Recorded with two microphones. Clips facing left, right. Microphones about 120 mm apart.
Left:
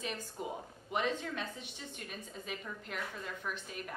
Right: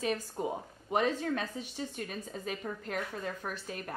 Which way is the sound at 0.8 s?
40° right (ahead or behind).